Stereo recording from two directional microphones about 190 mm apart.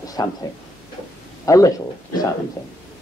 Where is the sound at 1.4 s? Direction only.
20° left (ahead or behind).